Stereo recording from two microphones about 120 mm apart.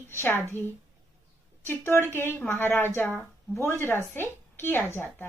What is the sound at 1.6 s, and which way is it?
A woman's voice, 20° left (ahead or behind).